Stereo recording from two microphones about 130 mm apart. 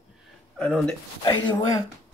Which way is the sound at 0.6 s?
5° left (ahead or behind).